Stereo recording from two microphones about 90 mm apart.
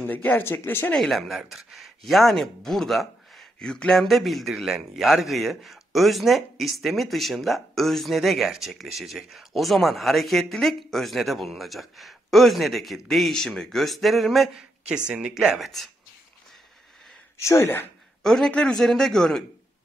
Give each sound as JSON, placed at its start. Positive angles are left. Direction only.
{"t": 0.0, "sound": "speech", "side_deg": 20}
{"t": 0.9, "sound": "speech", "side_deg": 5}
{"t": 15.0, "sound": "speech", "side_deg": -10}
{"t": 17.4, "sound": "speech", "side_deg": 30}
{"t": 18.2, "sound": "a man's voice", "side_deg": 5}